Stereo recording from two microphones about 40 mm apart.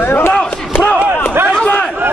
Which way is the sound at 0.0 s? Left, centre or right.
Left.